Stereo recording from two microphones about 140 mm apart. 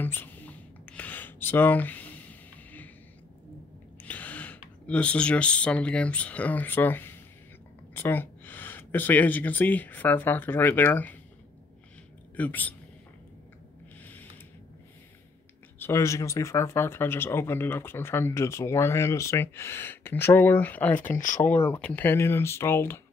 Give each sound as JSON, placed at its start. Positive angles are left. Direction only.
{"t": 0.0, "sound": "a sound", "side_deg": 15}
{"t": 4.0, "sound": "gasp", "side_deg": 10}
{"t": 4.8, "sound": "speech", "side_deg": 10}
{"t": 12.4, "sound": "speech", "side_deg": 10}
{"t": 15.8, "sound": "speech", "side_deg": 20}